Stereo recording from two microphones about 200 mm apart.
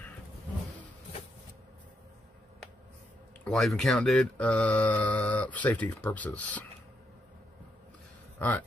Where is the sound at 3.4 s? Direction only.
5° left (ahead or behind).